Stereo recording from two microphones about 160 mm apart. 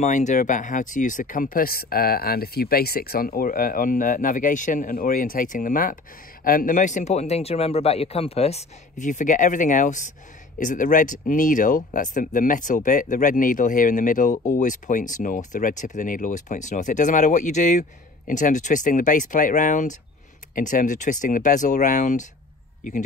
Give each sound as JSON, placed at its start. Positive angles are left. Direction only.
{"t": 0.0, "sound": "speech", "side_deg": 50}